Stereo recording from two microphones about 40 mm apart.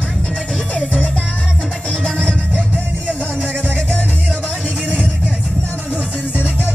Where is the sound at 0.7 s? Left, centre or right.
Left.